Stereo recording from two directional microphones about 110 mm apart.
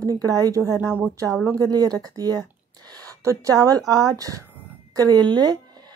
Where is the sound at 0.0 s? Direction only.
35° right (ahead or behind).